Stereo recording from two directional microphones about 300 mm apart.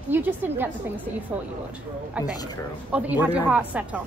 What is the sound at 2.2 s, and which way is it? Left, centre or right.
Speech, centre.